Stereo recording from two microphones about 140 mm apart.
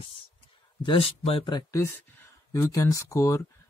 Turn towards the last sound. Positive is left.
turn(degrees=20)  # may be behind; listen again after turning